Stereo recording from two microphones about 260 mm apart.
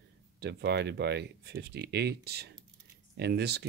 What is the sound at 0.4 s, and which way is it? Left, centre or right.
Speech, right.